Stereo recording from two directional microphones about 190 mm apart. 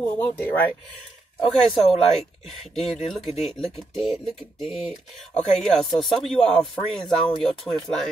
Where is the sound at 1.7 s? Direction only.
Centre (ahead or behind).